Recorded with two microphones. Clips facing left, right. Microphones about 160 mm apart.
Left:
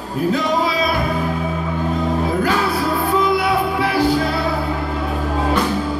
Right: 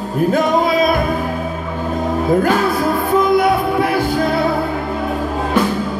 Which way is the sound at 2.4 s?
45° right (ahead or behind).